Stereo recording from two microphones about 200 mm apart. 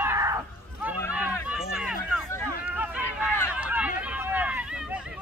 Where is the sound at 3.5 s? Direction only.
5° right (ahead or behind).